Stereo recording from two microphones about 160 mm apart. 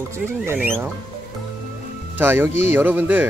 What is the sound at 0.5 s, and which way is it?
Speech, 10° right (ahead or behind).